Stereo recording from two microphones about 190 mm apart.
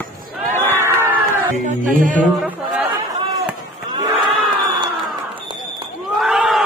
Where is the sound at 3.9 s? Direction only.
25° right (ahead or behind).